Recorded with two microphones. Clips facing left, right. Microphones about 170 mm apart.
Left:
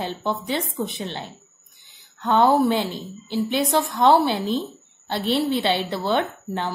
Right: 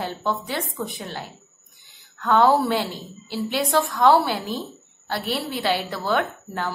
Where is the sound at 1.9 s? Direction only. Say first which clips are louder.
Even; 20° left (ahead or behind).